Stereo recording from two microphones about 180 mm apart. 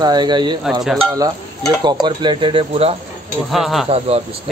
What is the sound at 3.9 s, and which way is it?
Speech, 35° right (ahead or behind).